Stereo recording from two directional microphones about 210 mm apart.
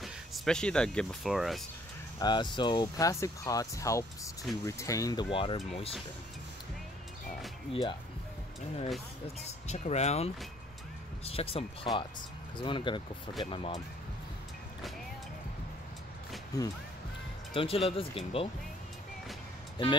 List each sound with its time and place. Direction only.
0.0 s speech: centre (ahead or behind)
2.1 s speech: 20° left (ahead or behind)
7.7 s speech: 25° left (ahead or behind)
9.7 s speech: 30° left (ahead or behind)
17.6 s speech: 25° left (ahead or behind)
19.8 s speech: 20° left (ahead or behind)